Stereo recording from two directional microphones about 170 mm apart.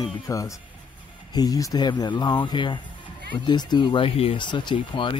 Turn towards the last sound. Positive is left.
turn(degrees=30)  # may be behind; listen again after turning